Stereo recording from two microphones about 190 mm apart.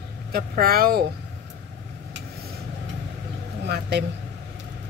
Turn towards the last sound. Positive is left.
turn(degrees=-60)  # may be behind; listen again after turning